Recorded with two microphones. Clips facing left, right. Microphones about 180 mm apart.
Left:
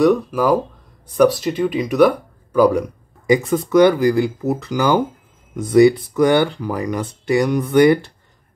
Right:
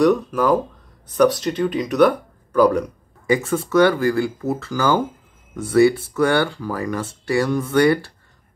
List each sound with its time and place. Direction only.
0.0 s speech: 10° left (ahead or behind)